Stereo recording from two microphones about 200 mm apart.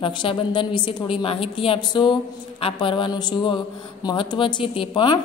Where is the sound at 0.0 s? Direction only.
25° left (ahead or behind).